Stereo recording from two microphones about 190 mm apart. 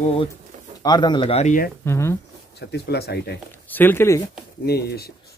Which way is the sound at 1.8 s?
15° left (ahead or behind).